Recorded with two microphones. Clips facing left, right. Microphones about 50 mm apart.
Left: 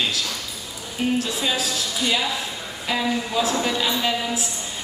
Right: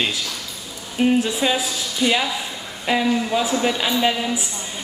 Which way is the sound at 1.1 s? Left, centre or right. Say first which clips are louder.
Right 4 dB; centre.